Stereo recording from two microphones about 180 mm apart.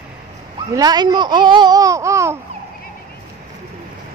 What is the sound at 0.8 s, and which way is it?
Speech, 20° right (ahead or behind).